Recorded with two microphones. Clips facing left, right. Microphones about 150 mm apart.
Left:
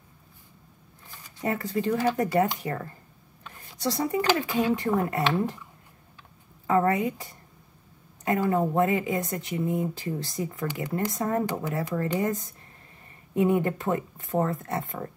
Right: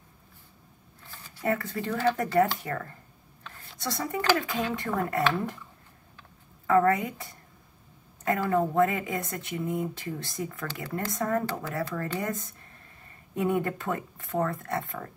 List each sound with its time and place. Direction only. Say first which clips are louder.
1.0 s speech: right 1 dB; 20° left (ahead or behind)
6.7 s speech: even; 20° left (ahead or behind)